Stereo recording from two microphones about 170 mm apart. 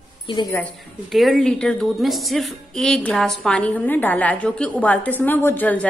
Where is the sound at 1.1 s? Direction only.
Centre (ahead or behind).